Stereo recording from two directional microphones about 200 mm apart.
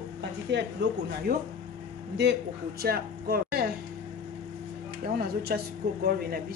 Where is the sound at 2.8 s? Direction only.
50° right (ahead or behind).